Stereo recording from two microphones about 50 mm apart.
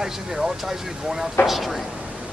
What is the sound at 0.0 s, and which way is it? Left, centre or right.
Speech, centre.